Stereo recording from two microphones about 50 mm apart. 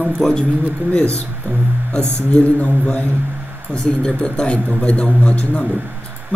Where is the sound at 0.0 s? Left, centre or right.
Centre.